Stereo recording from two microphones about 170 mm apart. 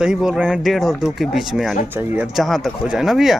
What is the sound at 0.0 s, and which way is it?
Speech, 5° right (ahead or behind).